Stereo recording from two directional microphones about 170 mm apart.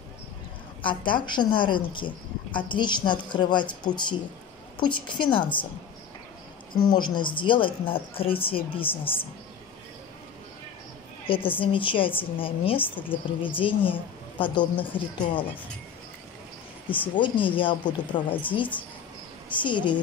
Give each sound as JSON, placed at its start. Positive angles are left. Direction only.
{"t": 0.8, "sound": "a woman's voice", "side_deg": 30}
{"t": 6.9, "sound": "speech", "side_deg": 30}
{"t": 11.2, "sound": "a woman's voice", "side_deg": 30}
{"t": 16.9, "sound": "a woman's voice", "side_deg": 30}
{"t": 19.5, "sound": "a woman's voice", "side_deg": 30}